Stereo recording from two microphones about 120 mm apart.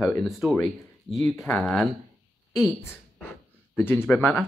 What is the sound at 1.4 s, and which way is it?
Speech, 10° left (ahead or behind).